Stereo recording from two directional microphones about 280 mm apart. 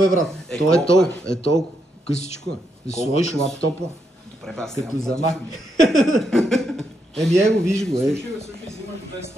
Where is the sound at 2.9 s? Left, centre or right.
Left.